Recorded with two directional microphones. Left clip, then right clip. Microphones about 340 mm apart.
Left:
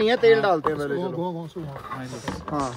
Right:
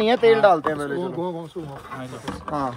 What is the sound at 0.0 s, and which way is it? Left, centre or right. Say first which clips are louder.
Speech: right 2 dB; centre.